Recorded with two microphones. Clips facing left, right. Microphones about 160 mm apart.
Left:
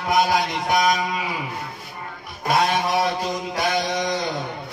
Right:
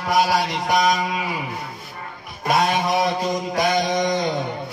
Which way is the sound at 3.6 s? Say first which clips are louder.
Right 2 dB; 20° right (ahead or behind).